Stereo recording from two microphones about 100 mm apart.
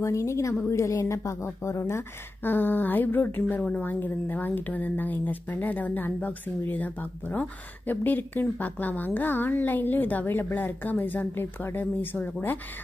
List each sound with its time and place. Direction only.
0.0 s a woman's voice: 30° left (ahead or behind)